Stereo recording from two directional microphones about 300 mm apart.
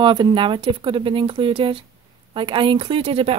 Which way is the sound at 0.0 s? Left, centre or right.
Centre.